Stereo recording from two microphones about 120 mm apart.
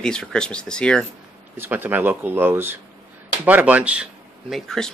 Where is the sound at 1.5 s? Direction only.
15° right (ahead or behind); by 4.9 s 5° left (ahead or behind).